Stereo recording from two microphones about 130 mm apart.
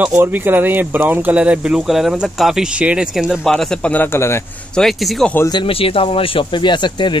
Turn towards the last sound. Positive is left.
turn(degrees=35)  # may be behind; listen again after turning